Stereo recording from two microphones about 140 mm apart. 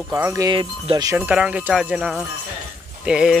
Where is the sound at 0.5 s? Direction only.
35° right (ahead or behind).